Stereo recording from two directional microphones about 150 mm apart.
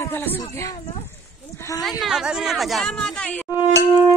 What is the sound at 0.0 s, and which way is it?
Speech, 15° left (ahead or behind).